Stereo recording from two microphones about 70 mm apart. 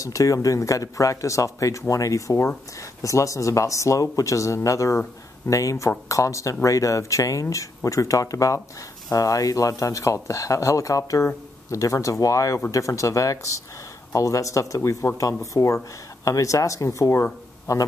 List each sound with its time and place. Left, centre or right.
0.0 s speech: left